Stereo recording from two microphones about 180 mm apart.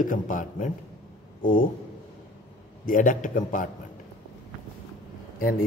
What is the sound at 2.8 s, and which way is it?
Speech, 50° left (ahead or behind).